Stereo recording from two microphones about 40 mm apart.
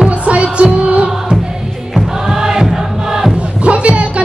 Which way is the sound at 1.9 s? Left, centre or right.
Centre.